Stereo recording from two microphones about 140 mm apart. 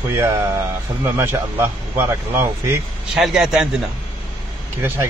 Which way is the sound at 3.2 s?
5° right (ahead or behind).